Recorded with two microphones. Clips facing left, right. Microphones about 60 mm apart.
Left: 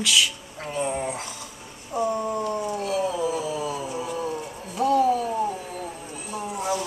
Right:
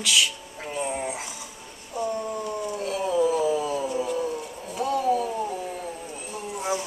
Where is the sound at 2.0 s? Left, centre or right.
Centre.